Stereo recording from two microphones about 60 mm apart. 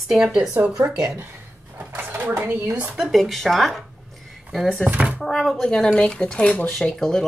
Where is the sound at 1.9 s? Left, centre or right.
Right.